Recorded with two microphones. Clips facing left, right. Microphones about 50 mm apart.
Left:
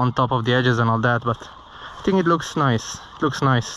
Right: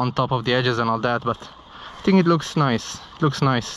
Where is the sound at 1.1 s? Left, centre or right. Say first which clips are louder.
Left 1 dB; right.